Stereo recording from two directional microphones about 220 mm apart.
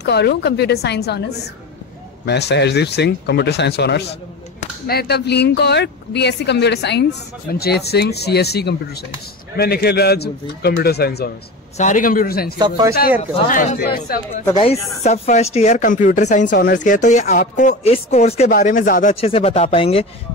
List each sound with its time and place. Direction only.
0.0 s a woman's voice: 50° left (ahead or behind)
11.7 s speech: 35° left (ahead or behind)
12.5 s speech: 20° right (ahead or behind)
13.5 s a woman's voice: 35° left (ahead or behind)
15.0 s speech: 30° left (ahead or behind)